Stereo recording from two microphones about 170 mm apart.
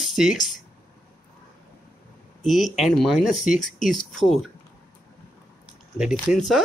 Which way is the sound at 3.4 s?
50° left (ahead or behind).